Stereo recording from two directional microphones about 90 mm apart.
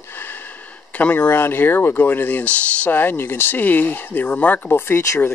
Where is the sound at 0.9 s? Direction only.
15° left (ahead or behind).